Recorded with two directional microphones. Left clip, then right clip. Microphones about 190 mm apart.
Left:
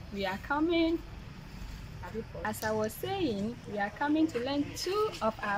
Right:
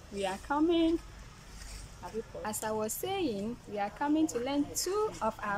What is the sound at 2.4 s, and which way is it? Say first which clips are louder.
Speech: left 3 dB; centre (ahead or behind).